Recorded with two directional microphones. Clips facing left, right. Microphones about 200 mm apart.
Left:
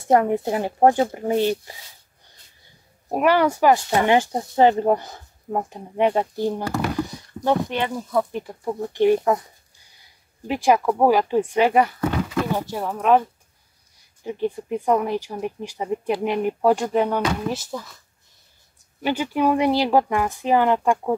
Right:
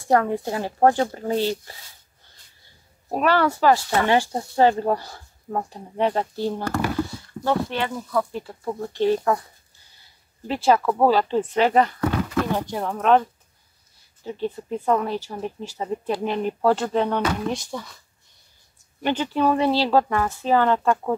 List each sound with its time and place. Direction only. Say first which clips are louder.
0.0 s speech: left 2 dB; 20° left (ahead or behind)
3.1 s speech: left 2 dB; 15° left (ahead or behind)
10.5 s speech: left 1 dB; 15° left (ahead or behind)
14.2 s speech: left 3 dB; 15° left (ahead or behind)
19.0 s speech: left 1 dB; 10° left (ahead or behind)